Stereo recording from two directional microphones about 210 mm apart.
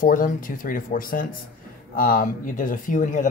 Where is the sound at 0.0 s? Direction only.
40° left (ahead or behind).